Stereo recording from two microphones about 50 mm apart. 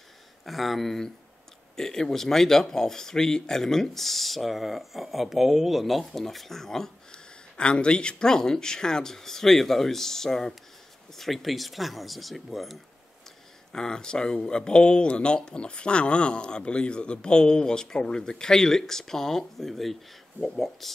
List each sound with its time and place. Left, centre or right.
0.5 s speech: centre
7.5 s speech: left; by 12.7 s centre
13.7 s speech: centre